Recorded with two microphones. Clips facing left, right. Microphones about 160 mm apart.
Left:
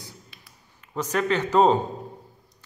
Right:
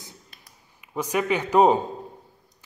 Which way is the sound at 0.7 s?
10° right (ahead or behind).